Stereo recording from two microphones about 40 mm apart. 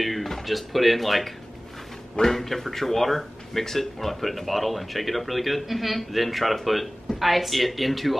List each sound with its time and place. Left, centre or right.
0.0 s a man's voice: centre